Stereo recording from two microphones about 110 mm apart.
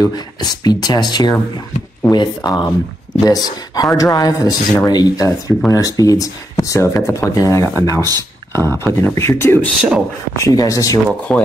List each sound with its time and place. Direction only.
0.0 s speech: 35° left (ahead or behind); by 9.6 s 20° left (ahead or behind)
9.8 s speech: 10° right (ahead or behind)
10.3 s speech: 30° left (ahead or behind)
11.3 s speech: 5° left (ahead or behind)